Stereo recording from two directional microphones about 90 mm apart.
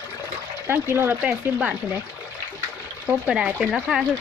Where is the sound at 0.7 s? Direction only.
25° right (ahead or behind).